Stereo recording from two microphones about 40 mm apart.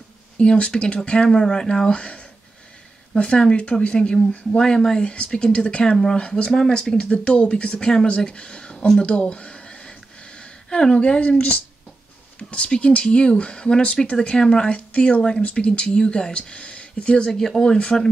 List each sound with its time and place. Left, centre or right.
0.4 s speech: left
4.6 s speech: centre
9.0 s a sound: left
10.7 s speech: left
17.3 s speech: centre